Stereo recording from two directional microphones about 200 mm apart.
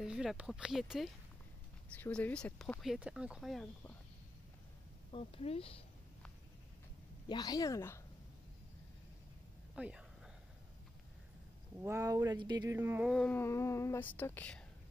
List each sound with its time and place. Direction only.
0.0 s speech: 5° right (ahead or behind)
5.1 s speech: 30° left (ahead or behind)
7.2 s speech: 20° left (ahead or behind)
9.8 s a sound: 5° right (ahead or behind)
11.8 s speech: 15° right (ahead or behind)
12.7 s speech: 10° right (ahead or behind)
13.1 s speech: 5° left (ahead or behind)